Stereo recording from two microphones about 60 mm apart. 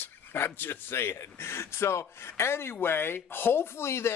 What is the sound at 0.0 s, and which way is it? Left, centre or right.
Speech, left.